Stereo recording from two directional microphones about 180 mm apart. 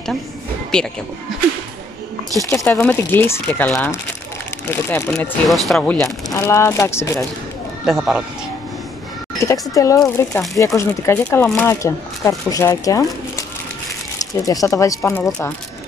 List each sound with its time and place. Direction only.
0.7 s speech: 5° left (ahead or behind)
2.5 s speech: 15° left (ahead or behind)
5.5 s speech: centre (ahead or behind)
6.3 s speech: 15° left (ahead or behind)
7.8 s speech: 5° right (ahead or behind)
9.4 s speech: 15° left (ahead or behind)